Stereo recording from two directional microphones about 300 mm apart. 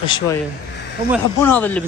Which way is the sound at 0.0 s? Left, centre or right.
Centre.